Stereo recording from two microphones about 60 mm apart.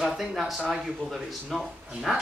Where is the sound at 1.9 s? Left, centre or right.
Centre.